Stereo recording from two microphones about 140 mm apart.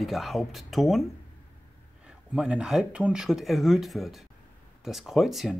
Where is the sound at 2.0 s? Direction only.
5° right (ahead or behind).